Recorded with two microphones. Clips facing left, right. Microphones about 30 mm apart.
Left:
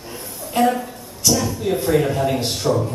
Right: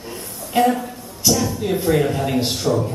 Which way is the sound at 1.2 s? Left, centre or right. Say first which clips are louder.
Even; centre.